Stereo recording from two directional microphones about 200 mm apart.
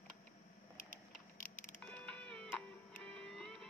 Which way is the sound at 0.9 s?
45° right (ahead or behind).